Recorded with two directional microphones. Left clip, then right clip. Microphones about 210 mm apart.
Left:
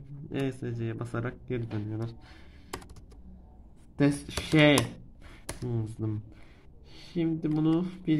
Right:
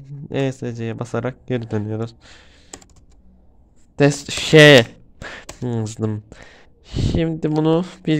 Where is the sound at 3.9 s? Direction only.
45° right (ahead or behind).